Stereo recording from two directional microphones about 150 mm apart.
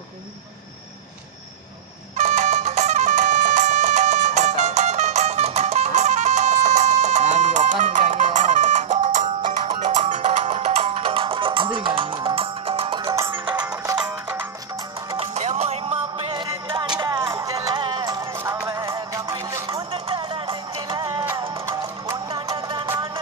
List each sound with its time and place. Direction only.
2.1 s music: 50° right (ahead or behind)
9.7 s music: 45° right (ahead or behind)
13.9 s music: 20° right (ahead or behind)
15.1 s music: 50° right (ahead or behind); by 18.3 s 30° right (ahead or behind)
18.3 s music: 15° right (ahead or behind)
18.7 s music: 30° right (ahead or behind)
19.9 s music: 35° right (ahead or behind); by 22.2 s 20° right (ahead or behind)
22.6 s music: 35° right (ahead or behind)